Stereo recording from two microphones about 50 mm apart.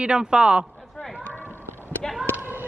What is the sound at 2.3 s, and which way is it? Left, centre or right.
Basketball bounce, right.